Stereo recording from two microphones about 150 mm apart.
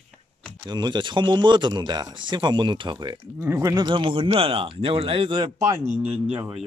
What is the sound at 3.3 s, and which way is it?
Speech, 20° right (ahead or behind).